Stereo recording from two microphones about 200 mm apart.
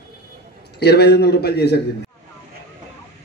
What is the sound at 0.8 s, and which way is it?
A man's voice, 55° left (ahead or behind).